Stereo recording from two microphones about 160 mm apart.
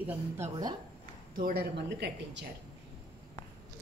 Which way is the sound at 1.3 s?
80° right.